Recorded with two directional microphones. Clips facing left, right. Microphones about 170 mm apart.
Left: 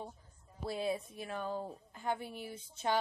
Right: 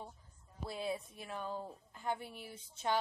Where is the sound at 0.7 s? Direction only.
15° left (ahead or behind).